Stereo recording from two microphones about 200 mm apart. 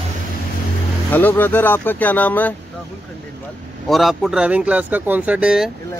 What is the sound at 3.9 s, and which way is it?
Speech, centre (ahead or behind).